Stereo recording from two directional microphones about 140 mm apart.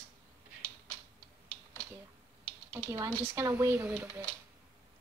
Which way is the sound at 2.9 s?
20° right (ahead or behind).